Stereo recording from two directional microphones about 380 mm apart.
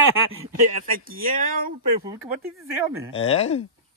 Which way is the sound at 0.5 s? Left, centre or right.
Right.